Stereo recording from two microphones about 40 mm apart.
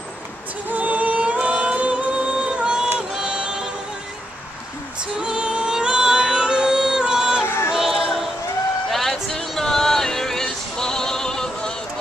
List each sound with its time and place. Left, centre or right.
0.7 s music: right
3.0 s a sound: right
5.2 s music: right
7.4 s music: left
7.7 s music: centre
8.9 s music: centre
9.6 s female singing: centre